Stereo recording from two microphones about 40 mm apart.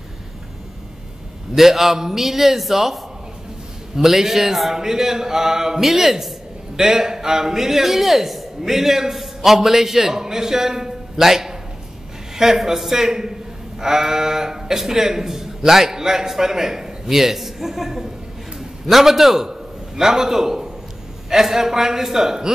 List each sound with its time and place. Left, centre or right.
1.5 s a man's voice: centre